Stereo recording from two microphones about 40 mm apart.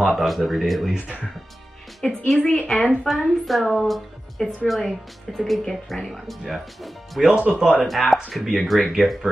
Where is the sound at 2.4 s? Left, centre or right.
Left.